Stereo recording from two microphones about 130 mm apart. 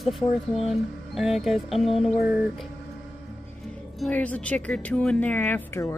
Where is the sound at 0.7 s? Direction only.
Centre (ahead or behind).